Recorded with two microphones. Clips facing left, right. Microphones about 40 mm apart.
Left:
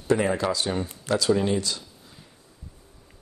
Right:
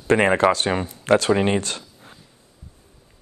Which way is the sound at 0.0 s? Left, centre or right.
Right.